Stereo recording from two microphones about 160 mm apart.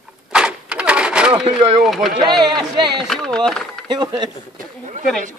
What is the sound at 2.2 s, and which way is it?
Speech, 25° right (ahead or behind).